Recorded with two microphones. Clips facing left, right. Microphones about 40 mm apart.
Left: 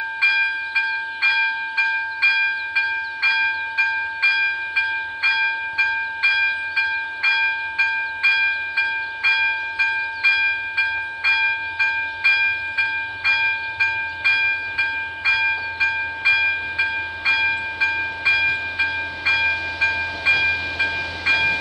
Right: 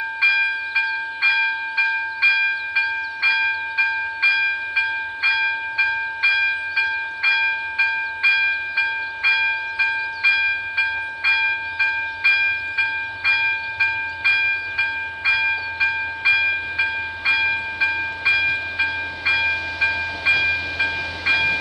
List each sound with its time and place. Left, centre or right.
0.2 s train: centre